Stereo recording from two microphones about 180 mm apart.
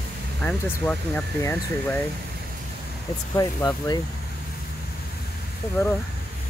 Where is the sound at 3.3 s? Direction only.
20° left (ahead or behind).